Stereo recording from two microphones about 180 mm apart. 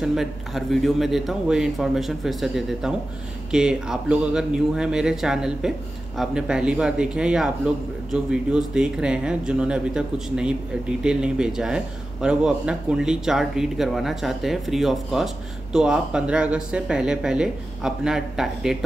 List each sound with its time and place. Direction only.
0.0 s speech: centre (ahead or behind)